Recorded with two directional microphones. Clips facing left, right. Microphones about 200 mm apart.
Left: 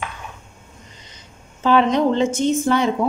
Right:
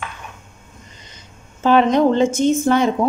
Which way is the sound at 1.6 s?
50° right (ahead or behind).